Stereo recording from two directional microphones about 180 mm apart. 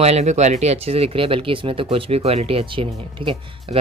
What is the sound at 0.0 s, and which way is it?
Speech, 35° right (ahead or behind).